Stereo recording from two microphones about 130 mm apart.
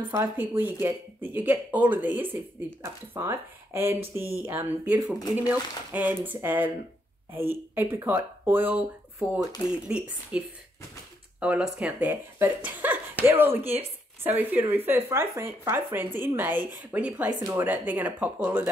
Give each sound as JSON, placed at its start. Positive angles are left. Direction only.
{"t": 0.1, "sound": "speech", "side_deg": -15}